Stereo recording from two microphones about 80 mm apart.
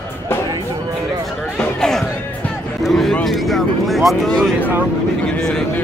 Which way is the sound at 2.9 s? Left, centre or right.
Centre.